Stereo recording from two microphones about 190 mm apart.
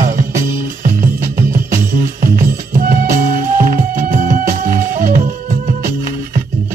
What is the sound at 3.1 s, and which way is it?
Music, 45° right (ahead or behind).